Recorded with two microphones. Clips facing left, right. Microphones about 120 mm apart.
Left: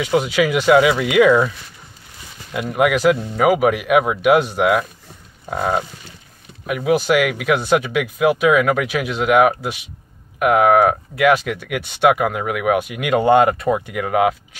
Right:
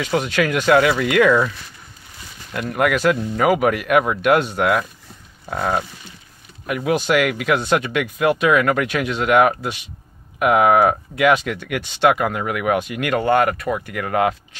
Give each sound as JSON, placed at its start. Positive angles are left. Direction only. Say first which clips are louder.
{"t": 0.0, "sound": "speech", "louder": "left 3 dB", "side_deg": 10}
{"t": 2.5, "sound": "speech", "louder": "left 2 dB", "side_deg": 10}
{"t": 13.2, "sound": "speech", "louder": "left 4 dB", "side_deg": 20}
{"t": 13.9, "sound": "speech", "louder": "right 1 dB", "side_deg": 5}